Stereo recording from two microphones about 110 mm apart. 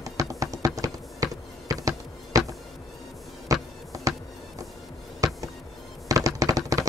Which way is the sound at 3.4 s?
30° right (ahead or behind).